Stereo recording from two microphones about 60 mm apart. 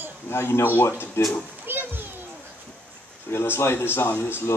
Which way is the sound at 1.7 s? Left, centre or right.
Right.